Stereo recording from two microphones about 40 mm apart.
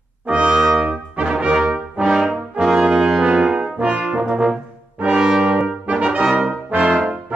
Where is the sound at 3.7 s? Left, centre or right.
Right.